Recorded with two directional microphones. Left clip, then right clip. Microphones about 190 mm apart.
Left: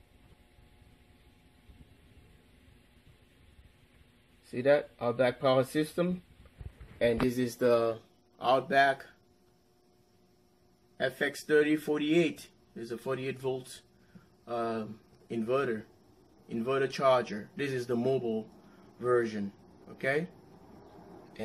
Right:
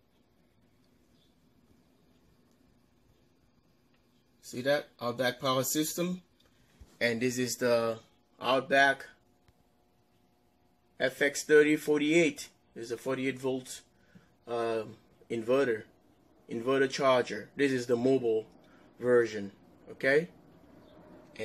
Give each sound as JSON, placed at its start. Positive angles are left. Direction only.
{"t": 4.6, "sound": "speech", "side_deg": 10}
{"t": 7.0, "sound": "speech", "side_deg": 5}
{"t": 8.4, "sound": "speech", "side_deg": -15}
{"t": 11.0, "sound": "a man's voice", "side_deg": -15}